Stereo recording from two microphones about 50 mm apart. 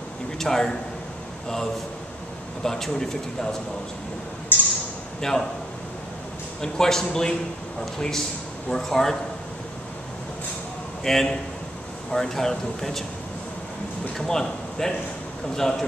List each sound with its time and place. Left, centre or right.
0.4 s a man's voice: centre
2.6 s speech: centre
4.5 s a sound: left
5.2 s speech: centre
6.6 s speech: centre
8.6 s speech: centre
11.1 s speech: centre
14.2 s speech: centre